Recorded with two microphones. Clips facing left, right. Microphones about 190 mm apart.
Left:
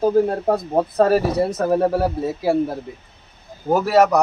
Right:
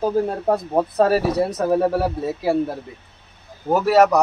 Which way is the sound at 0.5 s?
Centre (ahead or behind).